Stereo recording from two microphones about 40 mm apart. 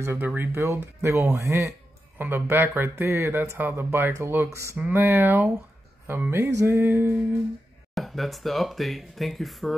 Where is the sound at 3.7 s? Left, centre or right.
Right.